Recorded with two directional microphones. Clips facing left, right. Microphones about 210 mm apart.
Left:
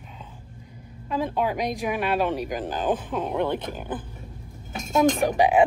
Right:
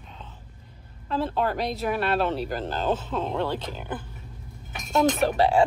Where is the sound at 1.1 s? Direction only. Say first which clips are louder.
Left 1 dB; 10° left (ahead or behind).